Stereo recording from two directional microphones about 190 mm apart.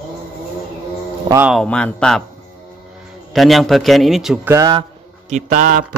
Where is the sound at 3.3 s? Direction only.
Centre (ahead or behind).